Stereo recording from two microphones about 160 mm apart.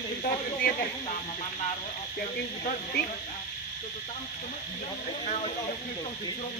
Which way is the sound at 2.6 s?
65° left (ahead or behind).